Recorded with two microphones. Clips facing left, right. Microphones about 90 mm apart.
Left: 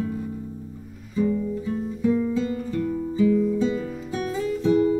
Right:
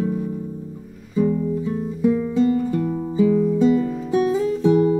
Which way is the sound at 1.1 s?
20° right (ahead or behind).